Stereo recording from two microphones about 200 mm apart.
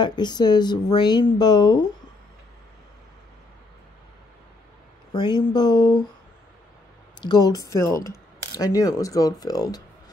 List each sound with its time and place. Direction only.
0.0 s speech: 20° left (ahead or behind)
5.1 s speech: 20° left (ahead or behind)
7.2 s speech: 20° left (ahead or behind)